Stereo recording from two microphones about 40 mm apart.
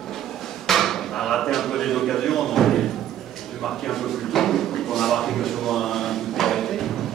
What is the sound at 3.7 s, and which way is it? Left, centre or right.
Drawer open or close, centre.